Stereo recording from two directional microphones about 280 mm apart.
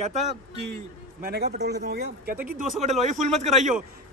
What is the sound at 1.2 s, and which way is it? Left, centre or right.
Speech, right.